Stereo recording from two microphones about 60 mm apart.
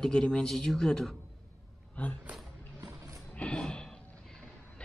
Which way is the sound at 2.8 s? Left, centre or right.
Right.